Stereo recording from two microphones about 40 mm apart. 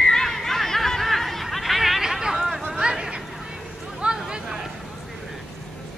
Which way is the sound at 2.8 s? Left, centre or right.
Right.